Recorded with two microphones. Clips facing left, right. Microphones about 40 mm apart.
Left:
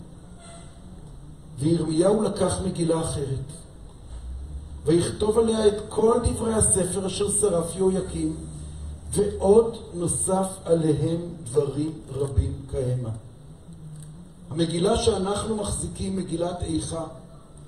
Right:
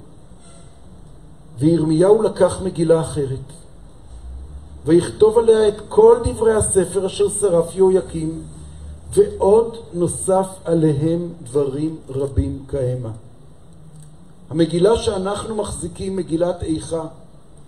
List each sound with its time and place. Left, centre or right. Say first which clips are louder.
1.6 s a man's voice: right 7 dB; right
4.8 s a man's voice: right 8 dB; right
9.4 s a man's voice: right 4 dB; right
14.5 s a man's voice: right 8 dB; right